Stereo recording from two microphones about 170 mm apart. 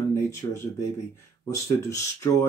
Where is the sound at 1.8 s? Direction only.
15° left (ahead or behind).